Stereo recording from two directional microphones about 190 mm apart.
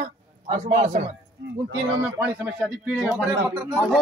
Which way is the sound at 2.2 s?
5° right (ahead or behind).